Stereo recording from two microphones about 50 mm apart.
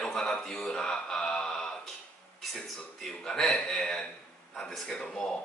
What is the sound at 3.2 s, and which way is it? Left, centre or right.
Speech, centre.